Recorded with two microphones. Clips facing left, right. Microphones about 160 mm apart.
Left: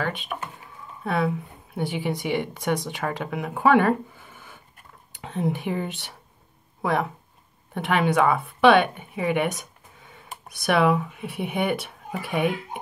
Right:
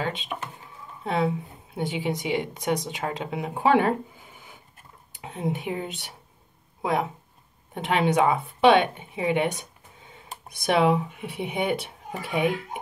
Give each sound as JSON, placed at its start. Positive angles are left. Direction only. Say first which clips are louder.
{"t": 0.0, "sound": "a woman's voice", "louder": "left 1 dB", "side_deg": -20}
{"t": 10.6, "sound": "speech", "louder": "even", "side_deg": -20}